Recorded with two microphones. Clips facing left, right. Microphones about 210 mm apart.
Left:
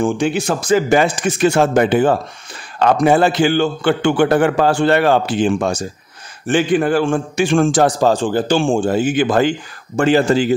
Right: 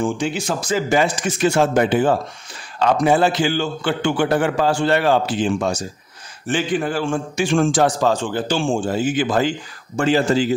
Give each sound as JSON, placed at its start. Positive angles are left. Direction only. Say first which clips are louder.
{"t": 0.0, "sound": "a man's voice", "louder": "left 5 dB", "side_deg": 55}
{"t": 8.5, "sound": "a man's voice", "louder": "left 4 dB", "side_deg": 55}